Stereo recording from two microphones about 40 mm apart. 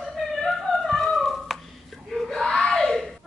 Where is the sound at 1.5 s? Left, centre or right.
Centre.